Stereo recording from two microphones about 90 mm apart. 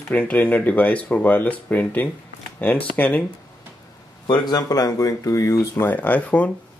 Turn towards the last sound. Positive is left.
turn(degrees=15)  # may be behind; listen again after turning